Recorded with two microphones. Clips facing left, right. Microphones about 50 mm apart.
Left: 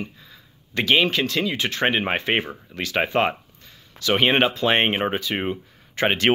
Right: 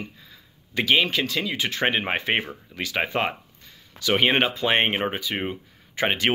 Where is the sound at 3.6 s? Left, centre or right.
Left.